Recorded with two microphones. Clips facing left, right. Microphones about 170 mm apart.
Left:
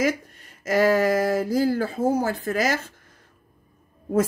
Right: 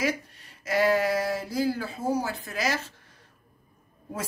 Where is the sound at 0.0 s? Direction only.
45° left (ahead or behind).